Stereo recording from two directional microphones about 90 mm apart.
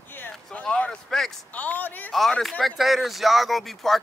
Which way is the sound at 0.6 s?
10° left (ahead or behind).